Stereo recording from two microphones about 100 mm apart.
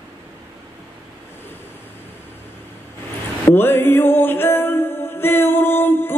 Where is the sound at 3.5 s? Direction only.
20° left (ahead or behind).